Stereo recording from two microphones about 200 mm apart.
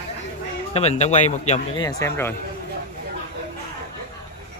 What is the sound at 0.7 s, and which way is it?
Speech, 35° left (ahead or behind).